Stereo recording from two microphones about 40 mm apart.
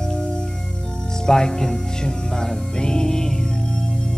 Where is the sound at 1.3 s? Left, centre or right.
Centre.